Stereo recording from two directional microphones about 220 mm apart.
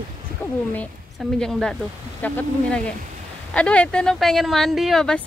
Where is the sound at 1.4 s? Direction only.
Centre (ahead or behind).